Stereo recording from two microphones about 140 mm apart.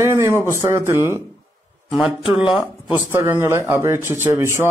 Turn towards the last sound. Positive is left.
turn(degrees=-20)  # may be behind; listen again after turning